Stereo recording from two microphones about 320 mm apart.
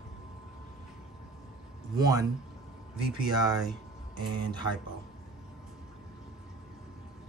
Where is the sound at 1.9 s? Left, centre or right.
Centre.